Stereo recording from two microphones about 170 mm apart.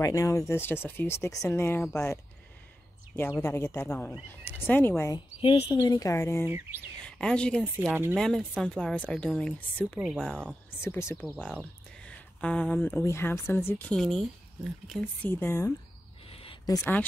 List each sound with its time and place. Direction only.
0.0 s speech: 20° left (ahead or behind)
3.2 s speech: 10° left (ahead or behind)
5.1 s speech: 30° left (ahead or behind)
6.4 s speech: 15° right (ahead or behind)
7.1 s a woman's voice: 5° left (ahead or behind)
7.9 s speech: 10° right (ahead or behind)
8.2 s a woman's voice: centre (ahead or behind)
9.9 s a woman's voice: 5° right (ahead or behind)
10.8 s speech: 15° left (ahead or behind)
16.3 s a sound: 35° left (ahead or behind)
16.6 s speech: 20° left (ahead or behind)